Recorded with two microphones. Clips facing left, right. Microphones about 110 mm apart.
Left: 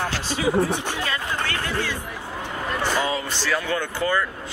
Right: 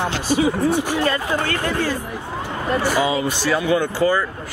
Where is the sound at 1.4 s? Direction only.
45° right (ahead or behind).